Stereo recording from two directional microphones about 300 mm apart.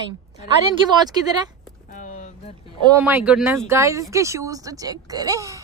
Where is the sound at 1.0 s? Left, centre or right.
Centre.